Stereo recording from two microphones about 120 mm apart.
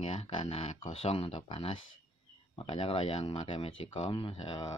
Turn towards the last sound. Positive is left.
turn(degrees=45)  # may be behind; listen again after turning